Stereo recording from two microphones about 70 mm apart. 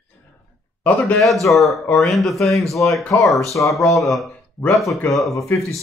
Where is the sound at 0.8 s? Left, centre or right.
Left.